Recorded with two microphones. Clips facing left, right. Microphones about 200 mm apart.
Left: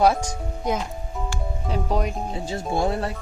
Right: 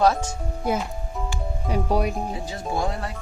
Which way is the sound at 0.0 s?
15° left (ahead or behind).